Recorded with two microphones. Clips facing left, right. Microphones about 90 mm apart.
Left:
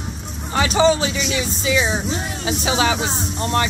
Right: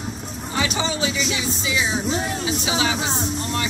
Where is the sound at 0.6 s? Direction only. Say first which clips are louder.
Left 8 dB; 40° left (ahead or behind).